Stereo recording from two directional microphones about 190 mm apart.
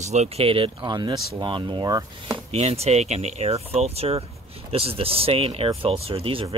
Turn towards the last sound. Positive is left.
turn(degrees=-30)  # may be behind; listen again after turning